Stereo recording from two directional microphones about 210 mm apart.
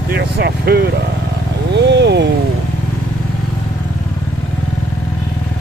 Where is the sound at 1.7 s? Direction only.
55° right (ahead or behind).